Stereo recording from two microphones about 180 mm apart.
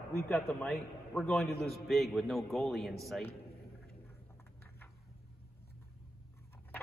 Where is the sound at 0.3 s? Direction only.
Centre (ahead or behind).